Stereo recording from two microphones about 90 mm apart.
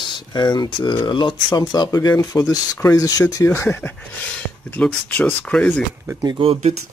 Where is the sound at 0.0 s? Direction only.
55° left (ahead or behind).